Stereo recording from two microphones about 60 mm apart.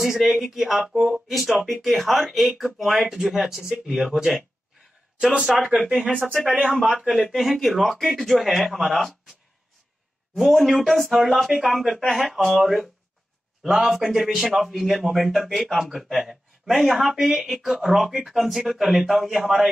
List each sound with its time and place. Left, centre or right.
0.0 s a man's voice: centre
3.6 s speech: centre
3.9 s a man's voice: centre
5.7 s speech: centre
7.0 s a man's voice: centre
10.3 s a man's voice: centre